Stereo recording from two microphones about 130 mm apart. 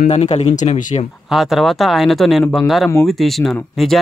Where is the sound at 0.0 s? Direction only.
60° left (ahead or behind).